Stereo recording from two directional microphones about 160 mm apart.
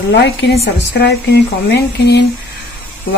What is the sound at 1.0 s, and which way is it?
Speech, 90° left.